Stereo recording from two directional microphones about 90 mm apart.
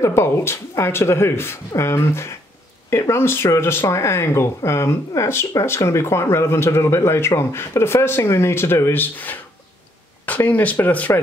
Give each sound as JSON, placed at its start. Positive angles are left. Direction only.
{"t": 0.0, "sound": "speech", "side_deg": 30}